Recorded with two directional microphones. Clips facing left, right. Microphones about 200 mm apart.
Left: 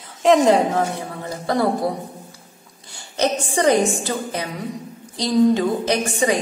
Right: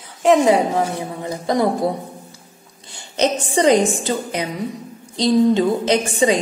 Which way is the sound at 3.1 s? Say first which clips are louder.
Right 2 dB; 20° right (ahead or behind).